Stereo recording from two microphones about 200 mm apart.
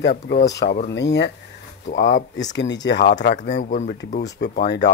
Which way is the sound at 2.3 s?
65° left (ahead or behind).